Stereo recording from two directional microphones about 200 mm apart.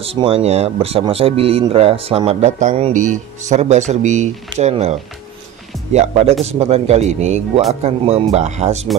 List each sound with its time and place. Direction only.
0.0 s speech: 30° right (ahead or behind)
5.9 s speech: 30° right (ahead or behind)